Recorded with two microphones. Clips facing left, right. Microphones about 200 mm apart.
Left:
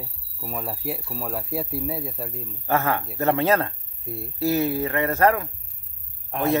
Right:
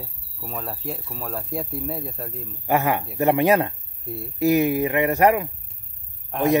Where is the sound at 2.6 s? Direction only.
15° right (ahead or behind).